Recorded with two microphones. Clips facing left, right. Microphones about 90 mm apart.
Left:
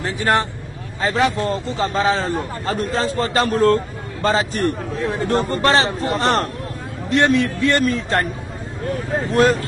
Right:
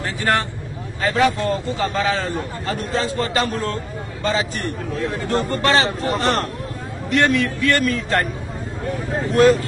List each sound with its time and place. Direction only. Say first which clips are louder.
0.0 s a man's voice: left 2 dB; 20° left (ahead or behind); by 6.5 s 40° left (ahead or behind)
7.1 s a man's voice: left 2 dB; 25° left (ahead or behind)